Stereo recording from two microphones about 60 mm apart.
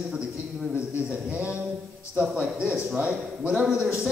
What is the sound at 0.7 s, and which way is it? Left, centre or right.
A man's voice, right.